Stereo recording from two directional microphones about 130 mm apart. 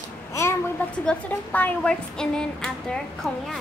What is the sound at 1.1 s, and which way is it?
Speech, 15° left (ahead or behind).